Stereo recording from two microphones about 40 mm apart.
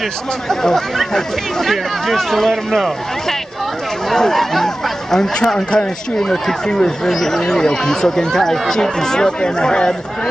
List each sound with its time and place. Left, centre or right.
0.5 s speech: centre
2.5 s speech: centre
4.1 s speech: centre
5.3 s speech: left
6.1 s speech: centre